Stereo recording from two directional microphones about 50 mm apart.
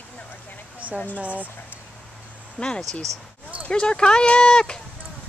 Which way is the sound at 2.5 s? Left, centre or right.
Centre.